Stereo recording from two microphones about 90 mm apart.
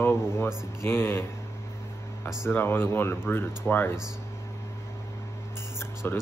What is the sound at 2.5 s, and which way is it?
Speech, 25° left (ahead or behind).